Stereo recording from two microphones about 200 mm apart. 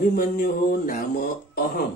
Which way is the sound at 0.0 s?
45° left (ahead or behind).